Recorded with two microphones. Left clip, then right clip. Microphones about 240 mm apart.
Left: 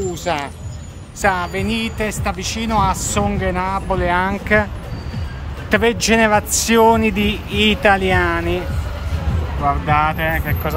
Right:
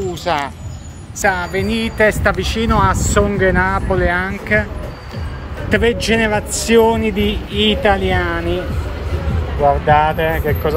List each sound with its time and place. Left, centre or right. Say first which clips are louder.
0.1 s music: right 3 dB; centre
1.2 s speech: right 1 dB; centre
5.7 s speech: even; centre
10.0 s speech: right 3 dB; centre